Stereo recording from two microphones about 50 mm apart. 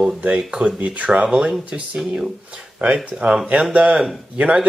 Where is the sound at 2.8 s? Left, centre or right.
Right.